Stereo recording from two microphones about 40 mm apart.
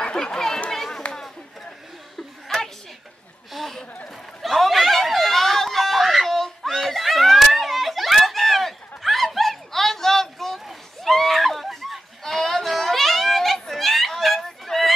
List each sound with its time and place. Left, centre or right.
0.0 s chatter: left
0.7 s children playing: centre
2.4 s chuckle: centre
3.5 s a sound: centre